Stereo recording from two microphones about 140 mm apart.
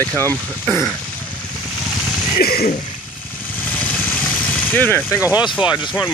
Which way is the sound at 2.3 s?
90° left.